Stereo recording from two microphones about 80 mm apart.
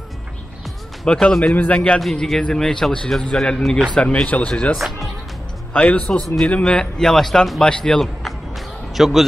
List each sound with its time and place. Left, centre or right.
1.0 s a man's voice: centre
2.0 s a man's voice: centre
4.7 s speech: centre
5.7 s a man's voice: centre
6.2 s a man's voice: centre
8.5 s a sound: centre